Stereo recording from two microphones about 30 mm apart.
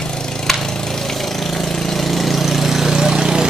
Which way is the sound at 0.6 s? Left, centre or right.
Centre.